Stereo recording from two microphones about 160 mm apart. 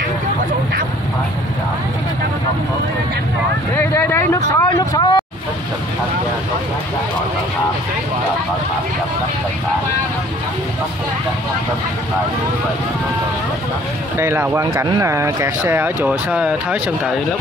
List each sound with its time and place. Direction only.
3.7 s speech: 15° left (ahead or behind)
14.1 s speech: 15° right (ahead or behind)